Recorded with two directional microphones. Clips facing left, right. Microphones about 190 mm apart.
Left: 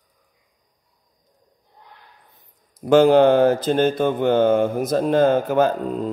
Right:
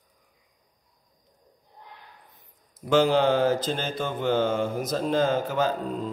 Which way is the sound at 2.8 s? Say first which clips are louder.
Left 8 dB; 55° left (ahead or behind).